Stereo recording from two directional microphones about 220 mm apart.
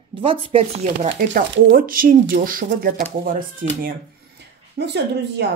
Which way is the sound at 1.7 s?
40° right (ahead or behind).